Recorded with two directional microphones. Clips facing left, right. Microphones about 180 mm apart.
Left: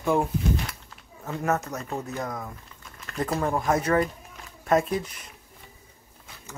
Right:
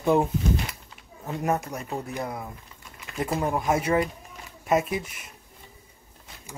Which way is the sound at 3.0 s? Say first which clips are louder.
Left 1 dB; 10° right (ahead or behind).